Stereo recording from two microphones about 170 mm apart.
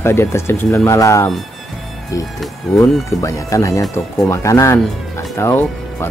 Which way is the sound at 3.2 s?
20° left (ahead or behind).